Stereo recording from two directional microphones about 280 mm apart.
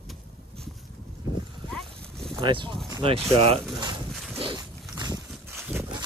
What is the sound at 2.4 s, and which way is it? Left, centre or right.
Speech, centre.